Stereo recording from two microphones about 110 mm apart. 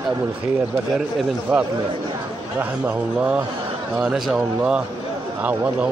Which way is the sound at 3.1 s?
15° right (ahead or behind).